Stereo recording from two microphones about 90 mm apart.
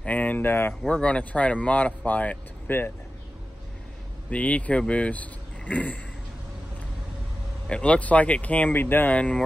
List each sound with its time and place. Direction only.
0.0 s speech: 15° left (ahead or behind)
0.8 s speech: 10° left (ahead or behind)
4.3 s speech: 15° left (ahead or behind)
7.6 s speech: 10° left (ahead or behind)